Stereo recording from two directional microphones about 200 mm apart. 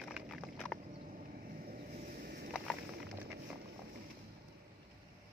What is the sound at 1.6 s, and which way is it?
Vehicle, 50° right (ahead or behind).